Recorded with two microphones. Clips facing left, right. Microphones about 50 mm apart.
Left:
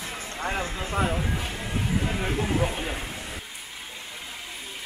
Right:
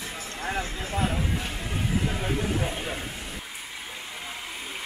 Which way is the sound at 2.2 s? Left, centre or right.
Centre.